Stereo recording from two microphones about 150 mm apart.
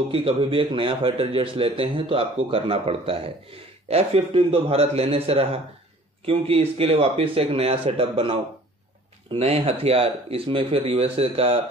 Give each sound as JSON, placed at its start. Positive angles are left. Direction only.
{"t": 0.1, "sound": "a man's voice", "side_deg": -35}